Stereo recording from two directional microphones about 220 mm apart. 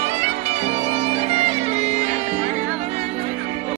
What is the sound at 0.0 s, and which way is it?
Music, 30° right (ahead or behind).